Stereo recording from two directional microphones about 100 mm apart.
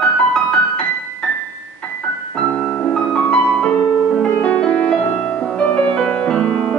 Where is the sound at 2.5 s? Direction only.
15° left (ahead or behind).